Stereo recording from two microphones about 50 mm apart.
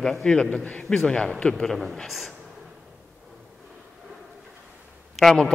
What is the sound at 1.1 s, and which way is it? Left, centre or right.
Speech, centre.